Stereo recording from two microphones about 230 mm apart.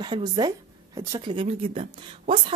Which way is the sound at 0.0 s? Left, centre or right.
Centre.